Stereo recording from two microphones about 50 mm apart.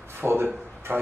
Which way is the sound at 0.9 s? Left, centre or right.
Right.